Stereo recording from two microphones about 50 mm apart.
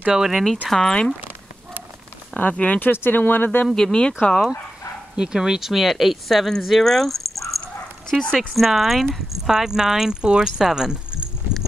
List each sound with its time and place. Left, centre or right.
0.1 s speech: centre
0.7 s speech: centre
2.5 s speech: left
2.8 s speech: left
3.7 s speech: centre
5.1 s speech: centre
8.4 s speech: centre